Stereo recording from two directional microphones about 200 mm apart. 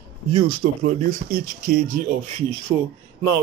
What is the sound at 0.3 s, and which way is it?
Speech, 25° right (ahead or behind).